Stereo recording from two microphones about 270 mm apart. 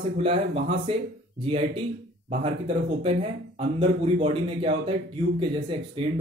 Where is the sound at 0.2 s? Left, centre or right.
Right.